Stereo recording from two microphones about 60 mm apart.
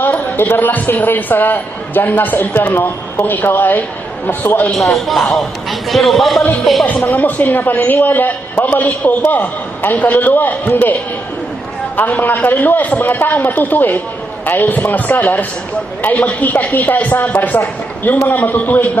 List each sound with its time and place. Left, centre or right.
0.0 s a man's voice: left
4.7 s a man's voice: centre
6.9 s a man's voice: left
12.0 s a man's voice: left